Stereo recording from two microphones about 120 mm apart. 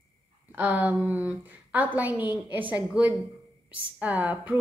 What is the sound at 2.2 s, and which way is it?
Speech, 40° left (ahead or behind).